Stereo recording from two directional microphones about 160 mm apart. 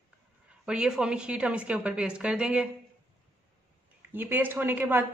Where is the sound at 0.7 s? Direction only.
5° right (ahead or behind).